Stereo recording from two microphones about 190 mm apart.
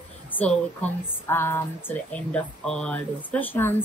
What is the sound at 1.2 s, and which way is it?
A woman's voice, 10° left (ahead or behind).